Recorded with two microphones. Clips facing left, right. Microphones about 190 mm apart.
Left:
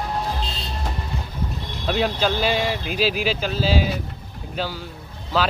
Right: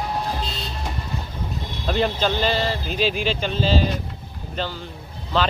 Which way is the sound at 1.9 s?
5° left (ahead or behind).